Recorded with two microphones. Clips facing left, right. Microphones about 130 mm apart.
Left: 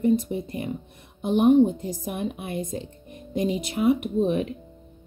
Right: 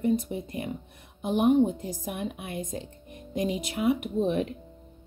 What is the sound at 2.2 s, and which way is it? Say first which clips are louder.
A woman's voice: left 4 dB; 30° left (ahead or behind).